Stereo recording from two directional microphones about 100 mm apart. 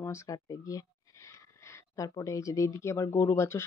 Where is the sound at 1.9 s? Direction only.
35° left (ahead or behind).